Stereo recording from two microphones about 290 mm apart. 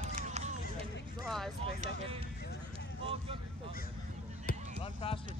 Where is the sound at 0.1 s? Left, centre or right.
Right.